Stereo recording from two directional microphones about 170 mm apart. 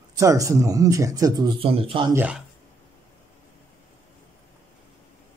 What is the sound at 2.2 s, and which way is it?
Speech, 5° right (ahead or behind).